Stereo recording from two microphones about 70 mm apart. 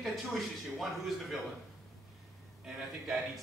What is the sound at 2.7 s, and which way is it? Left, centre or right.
Speech, centre.